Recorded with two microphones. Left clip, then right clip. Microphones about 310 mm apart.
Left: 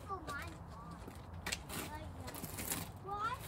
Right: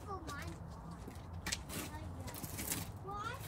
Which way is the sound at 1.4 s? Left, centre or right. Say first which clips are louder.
Even; centre.